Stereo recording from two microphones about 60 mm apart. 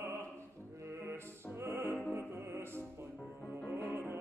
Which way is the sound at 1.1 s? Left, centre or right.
Right.